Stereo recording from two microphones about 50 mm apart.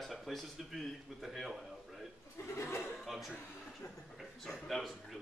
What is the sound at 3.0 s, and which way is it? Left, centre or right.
Speech, centre.